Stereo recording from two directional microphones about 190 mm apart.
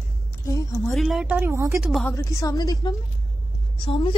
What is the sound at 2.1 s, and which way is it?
A woman's voice, 15° left (ahead or behind).